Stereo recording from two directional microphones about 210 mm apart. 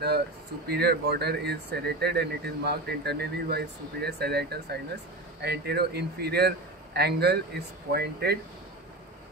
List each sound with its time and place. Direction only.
0.7 s speech: 50° right (ahead or behind)